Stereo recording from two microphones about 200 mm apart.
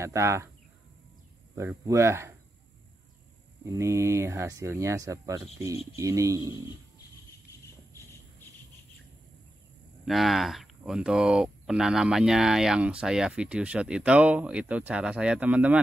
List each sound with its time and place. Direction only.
0.0 s speech: 15° right (ahead or behind)
1.5 s speech: 15° right (ahead or behind)
3.6 s speech: 15° right (ahead or behind)
7.4 s cricket: 15° left (ahead or behind)
10.0 s speech: centre (ahead or behind)